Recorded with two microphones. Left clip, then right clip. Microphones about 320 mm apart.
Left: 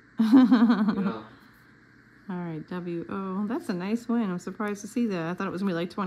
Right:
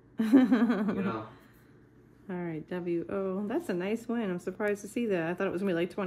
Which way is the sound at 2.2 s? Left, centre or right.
Centre.